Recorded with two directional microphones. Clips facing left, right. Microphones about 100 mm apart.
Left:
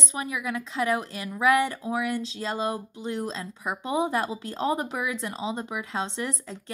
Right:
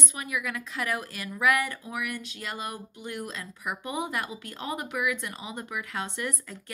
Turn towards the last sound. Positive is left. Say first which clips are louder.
# left 2 dB
turn(degrees=25)  # may be behind; listen again after turning